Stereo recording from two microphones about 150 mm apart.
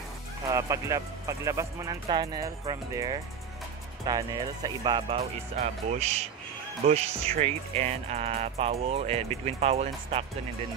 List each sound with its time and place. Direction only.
0.5 s speech: 20° right (ahead or behind)
5.2 s speech: 50° right (ahead or behind)